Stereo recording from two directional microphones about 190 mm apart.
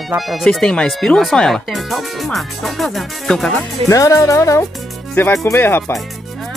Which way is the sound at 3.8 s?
15° left (ahead or behind).